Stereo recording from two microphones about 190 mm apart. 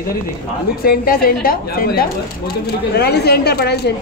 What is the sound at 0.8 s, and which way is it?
Speech, 50° left (ahead or behind).